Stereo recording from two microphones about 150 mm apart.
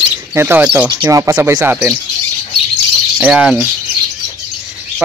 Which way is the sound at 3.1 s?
10° right (ahead or behind).